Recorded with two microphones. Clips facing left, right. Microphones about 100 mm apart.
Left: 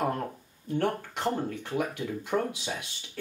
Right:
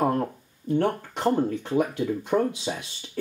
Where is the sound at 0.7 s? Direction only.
40° right (ahead or behind).